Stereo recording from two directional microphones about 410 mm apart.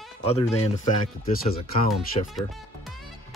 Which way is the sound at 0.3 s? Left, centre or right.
Centre.